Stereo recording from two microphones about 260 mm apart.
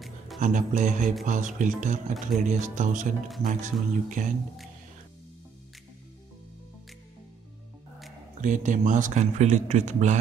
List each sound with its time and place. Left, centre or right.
0.4 s speech: right
8.4 s speech: right